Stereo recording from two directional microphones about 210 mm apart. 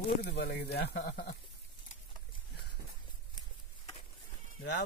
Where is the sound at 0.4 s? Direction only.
50° left (ahead or behind).